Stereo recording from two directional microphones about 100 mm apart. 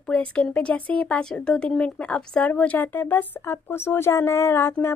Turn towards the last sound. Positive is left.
turn(degrees=25)  # may be behind; listen again after turning